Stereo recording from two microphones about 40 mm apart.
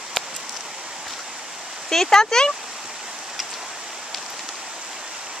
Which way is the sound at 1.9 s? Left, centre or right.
Centre.